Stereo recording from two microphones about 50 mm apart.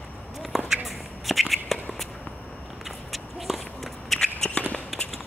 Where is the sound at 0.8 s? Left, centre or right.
Centre.